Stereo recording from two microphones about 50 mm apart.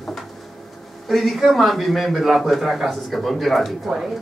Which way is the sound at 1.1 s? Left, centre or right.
Centre.